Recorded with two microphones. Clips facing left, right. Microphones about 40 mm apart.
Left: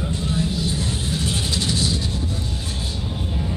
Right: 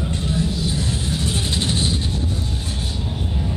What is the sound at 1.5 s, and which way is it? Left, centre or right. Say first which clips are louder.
Vehicle: right 1 dB; right.